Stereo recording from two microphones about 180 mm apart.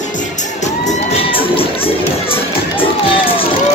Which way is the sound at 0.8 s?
30° left (ahead or behind).